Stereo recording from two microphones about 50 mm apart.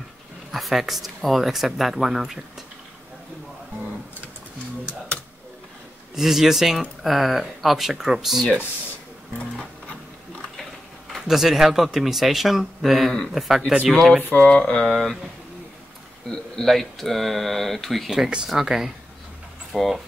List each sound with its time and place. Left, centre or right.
0.5 s speech: centre
6.1 s speech: centre
11.2 s speech: centre
14.2 s speech: left
14.6 s a sound: centre
16.3 s speech: centre
18.1 s speech: centre